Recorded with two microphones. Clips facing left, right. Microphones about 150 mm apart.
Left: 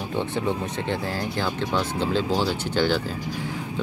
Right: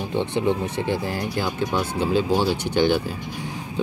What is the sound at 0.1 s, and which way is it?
Speech, 20° right (ahead or behind).